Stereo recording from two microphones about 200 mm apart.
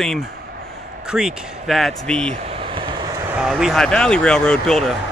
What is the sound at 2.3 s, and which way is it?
Vehicle, 30° right (ahead or behind).